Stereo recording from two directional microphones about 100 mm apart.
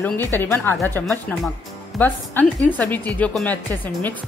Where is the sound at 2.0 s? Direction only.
15° left (ahead or behind).